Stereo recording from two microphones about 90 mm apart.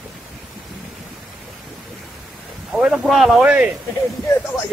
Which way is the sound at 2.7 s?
5° right (ahead or behind).